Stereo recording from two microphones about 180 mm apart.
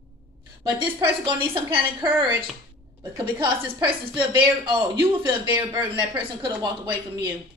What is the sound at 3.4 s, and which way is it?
A woman's voice, 25° right (ahead or behind).